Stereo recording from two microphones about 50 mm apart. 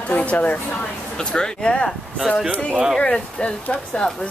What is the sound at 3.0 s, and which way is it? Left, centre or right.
Speech, centre.